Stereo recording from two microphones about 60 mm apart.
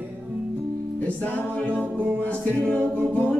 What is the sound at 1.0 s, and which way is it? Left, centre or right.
Music, left.